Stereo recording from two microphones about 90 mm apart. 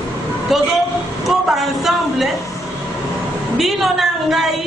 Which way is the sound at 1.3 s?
Centre (ahead or behind).